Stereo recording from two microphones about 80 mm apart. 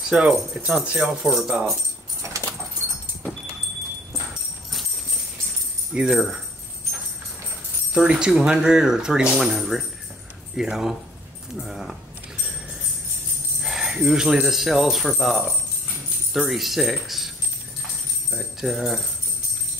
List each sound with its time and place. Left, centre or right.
0.1 s speech: centre
5.9 s speech: centre
7.9 s speech: centre
13.6 s speech: centre
18.3 s speech: centre